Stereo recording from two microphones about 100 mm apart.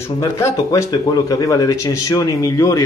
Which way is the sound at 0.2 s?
30° left (ahead or behind).